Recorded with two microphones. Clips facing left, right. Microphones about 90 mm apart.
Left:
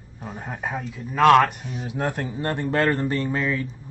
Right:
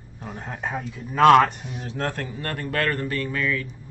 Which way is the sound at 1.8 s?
15° left (ahead or behind).